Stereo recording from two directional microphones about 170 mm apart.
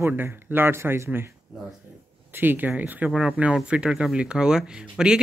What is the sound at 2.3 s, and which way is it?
Speech, 10° right (ahead or behind).